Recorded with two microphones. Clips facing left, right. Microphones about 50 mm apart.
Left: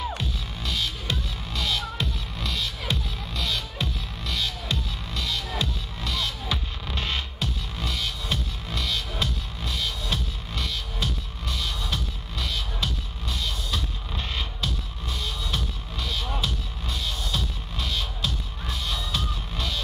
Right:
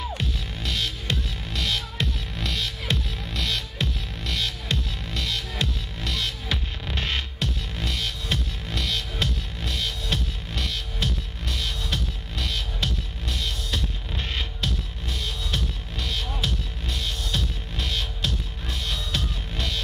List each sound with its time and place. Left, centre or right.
0.2 s music: right